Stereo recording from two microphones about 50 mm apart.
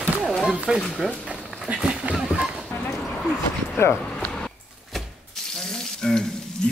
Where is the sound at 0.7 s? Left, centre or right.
Centre.